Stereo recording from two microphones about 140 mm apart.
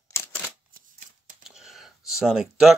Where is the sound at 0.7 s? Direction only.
75° right (ahead or behind).